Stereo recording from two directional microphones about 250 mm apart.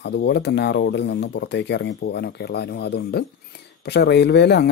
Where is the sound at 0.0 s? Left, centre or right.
Left.